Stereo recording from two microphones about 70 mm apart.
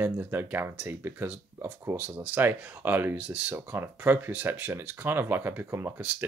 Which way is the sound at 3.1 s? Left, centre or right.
Centre.